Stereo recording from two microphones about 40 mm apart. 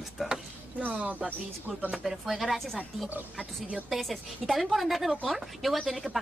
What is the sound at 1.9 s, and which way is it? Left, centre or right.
Speech, centre.